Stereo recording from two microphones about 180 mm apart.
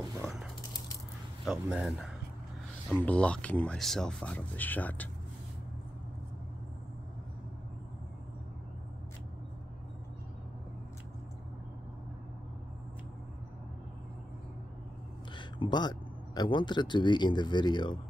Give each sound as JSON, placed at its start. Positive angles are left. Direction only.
{"t": 1.4, "sound": "speech", "side_deg": -5}
{"t": 15.3, "sound": "speech", "side_deg": 25}